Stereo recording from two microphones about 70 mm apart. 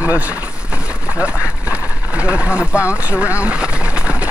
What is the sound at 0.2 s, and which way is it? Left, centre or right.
Vehicle, centre.